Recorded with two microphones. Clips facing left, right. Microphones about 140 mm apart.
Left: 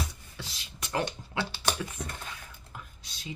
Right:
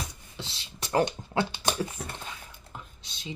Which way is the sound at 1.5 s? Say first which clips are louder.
Right 1 dB; 20° right (ahead or behind).